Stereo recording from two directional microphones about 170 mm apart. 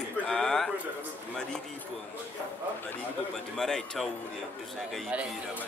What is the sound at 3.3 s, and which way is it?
Speech, centre (ahead or behind).